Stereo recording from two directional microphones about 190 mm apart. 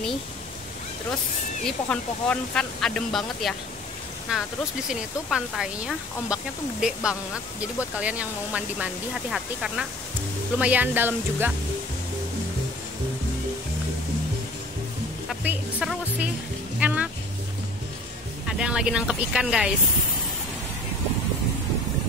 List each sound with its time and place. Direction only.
1.7 s speech: 5° left (ahead or behind); by 11.5 s 10° right (ahead or behind)
15.4 s speech: 5° right (ahead or behind)
18.6 s speech: 5° right (ahead or behind)